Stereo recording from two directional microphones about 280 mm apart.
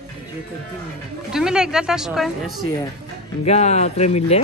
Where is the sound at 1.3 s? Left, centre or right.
Centre.